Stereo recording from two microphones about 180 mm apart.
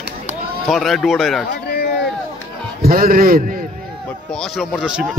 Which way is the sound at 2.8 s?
55° right (ahead or behind).